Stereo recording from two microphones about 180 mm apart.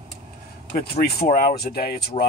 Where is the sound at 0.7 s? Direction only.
60° left (ahead or behind).